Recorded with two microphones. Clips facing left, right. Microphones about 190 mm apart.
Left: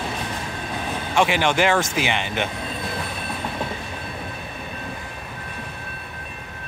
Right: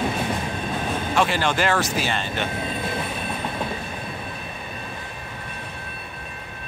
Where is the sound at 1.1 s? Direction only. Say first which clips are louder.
Left 3 dB; 15° left (ahead or behind).